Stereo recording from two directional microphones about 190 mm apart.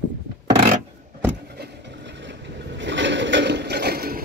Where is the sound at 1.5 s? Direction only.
65° right (ahead or behind).